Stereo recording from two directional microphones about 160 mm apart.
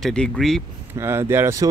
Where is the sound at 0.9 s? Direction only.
15° right (ahead or behind).